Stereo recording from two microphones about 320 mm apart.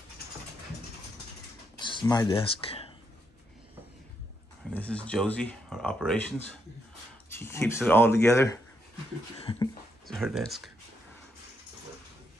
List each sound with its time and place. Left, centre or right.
1.8 s speech: centre
4.6 s speech: centre
10.0 s speech: centre